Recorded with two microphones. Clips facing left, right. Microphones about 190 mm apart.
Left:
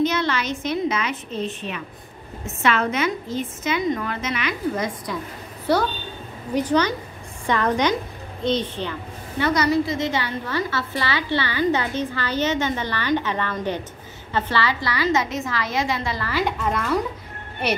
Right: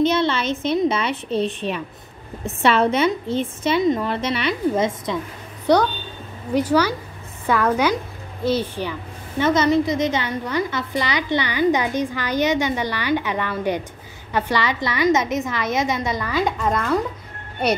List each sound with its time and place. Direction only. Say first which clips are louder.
0.0 s a woman's voice: right 3 dB; 25° right (ahead or behind)
6.5 s a woman's voice: right 2 dB; 10° right (ahead or behind)
9.4 s a woman's voice: right 3 dB; 20° right (ahead or behind)